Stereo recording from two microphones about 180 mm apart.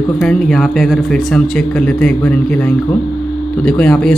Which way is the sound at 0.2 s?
5° left (ahead or behind).